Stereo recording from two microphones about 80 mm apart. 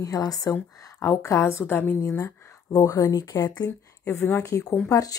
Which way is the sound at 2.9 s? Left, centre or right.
Left.